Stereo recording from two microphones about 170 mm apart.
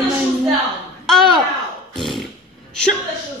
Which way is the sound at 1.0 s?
Centre (ahead or behind).